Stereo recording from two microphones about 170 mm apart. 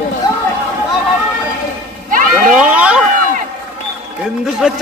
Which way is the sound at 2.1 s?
50° right (ahead or behind).